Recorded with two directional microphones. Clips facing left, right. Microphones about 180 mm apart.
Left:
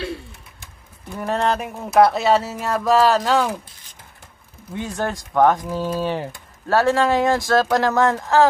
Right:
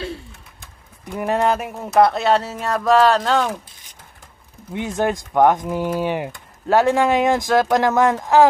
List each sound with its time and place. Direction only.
1.1 s speech: 10° right (ahead or behind); by 3.5 s 5° left (ahead or behind)
4.7 s speech: 20° right (ahead or behind)